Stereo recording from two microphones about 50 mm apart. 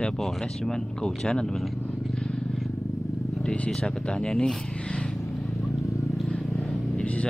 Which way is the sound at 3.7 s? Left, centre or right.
Centre.